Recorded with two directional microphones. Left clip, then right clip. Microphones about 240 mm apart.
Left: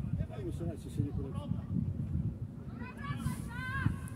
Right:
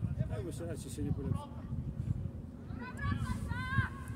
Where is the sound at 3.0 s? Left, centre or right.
Right.